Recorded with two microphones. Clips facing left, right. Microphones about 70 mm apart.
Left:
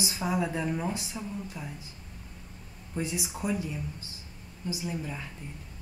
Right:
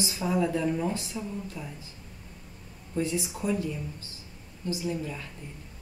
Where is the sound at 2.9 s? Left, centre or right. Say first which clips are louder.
Right 4 dB; centre.